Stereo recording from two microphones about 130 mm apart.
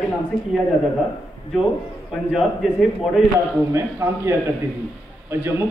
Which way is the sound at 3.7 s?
20° right (ahead or behind).